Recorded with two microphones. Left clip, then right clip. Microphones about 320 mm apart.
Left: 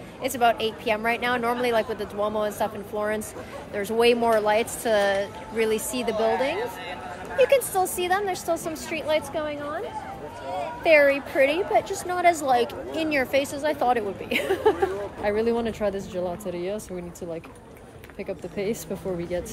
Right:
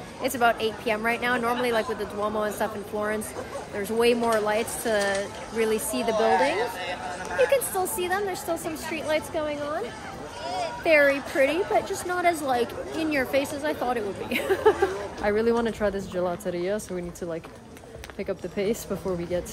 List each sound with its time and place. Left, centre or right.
0.2 s speech: centre
6.1 s speech: right
7.4 s speech: centre
18.2 s speech: centre